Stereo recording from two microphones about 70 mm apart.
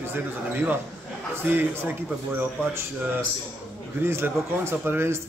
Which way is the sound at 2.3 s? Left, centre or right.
Right.